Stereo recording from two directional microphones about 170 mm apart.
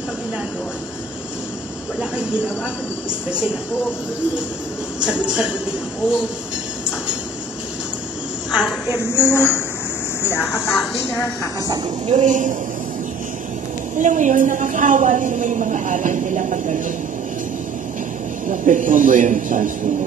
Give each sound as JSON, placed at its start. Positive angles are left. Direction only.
{"t": 2.0, "sound": "speech", "side_deg": -5}
{"t": 5.0, "sound": "speech", "side_deg": -5}
{"t": 8.5, "sound": "a woman's voice", "side_deg": -5}
{"t": 9.1, "sound": "speech", "side_deg": 15}
{"t": 12.1, "sound": "a woman's voice", "side_deg": -45}
{"t": 13.9, "sound": "a woman's voice", "side_deg": -45}
{"t": 18.5, "sound": "a woman's voice", "side_deg": -50}